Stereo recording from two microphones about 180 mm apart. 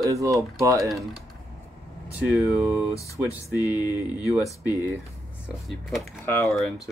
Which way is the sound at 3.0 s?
15° left (ahead or behind).